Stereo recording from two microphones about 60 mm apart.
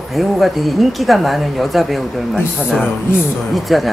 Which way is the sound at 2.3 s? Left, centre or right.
Centre.